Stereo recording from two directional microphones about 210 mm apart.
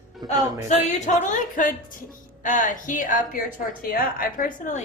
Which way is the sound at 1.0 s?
35° left (ahead or behind).